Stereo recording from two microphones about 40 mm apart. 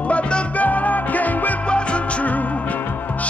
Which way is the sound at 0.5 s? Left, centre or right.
Left.